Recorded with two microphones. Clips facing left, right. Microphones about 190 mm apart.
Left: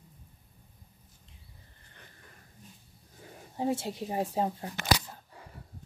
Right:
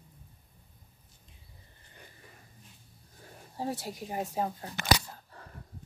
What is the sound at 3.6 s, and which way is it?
Speech, 25° left (ahead or behind).